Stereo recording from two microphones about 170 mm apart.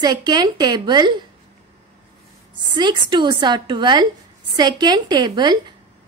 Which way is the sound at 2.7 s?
25° right (ahead or behind).